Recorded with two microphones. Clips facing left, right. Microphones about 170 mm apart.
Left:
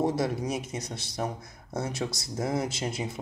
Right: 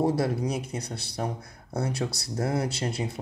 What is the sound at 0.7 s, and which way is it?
Speech, 60° right (ahead or behind).